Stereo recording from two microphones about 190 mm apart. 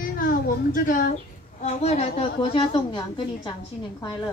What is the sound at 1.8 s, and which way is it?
A woman's voice, 30° left (ahead or behind).